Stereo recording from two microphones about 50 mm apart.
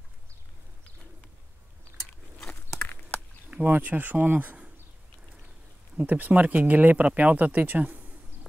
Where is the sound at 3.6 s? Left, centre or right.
Right.